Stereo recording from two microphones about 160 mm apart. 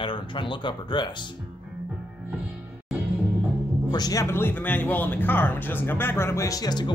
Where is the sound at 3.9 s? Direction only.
25° left (ahead or behind).